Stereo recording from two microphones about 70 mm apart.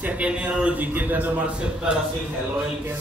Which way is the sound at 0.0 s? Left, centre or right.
Centre.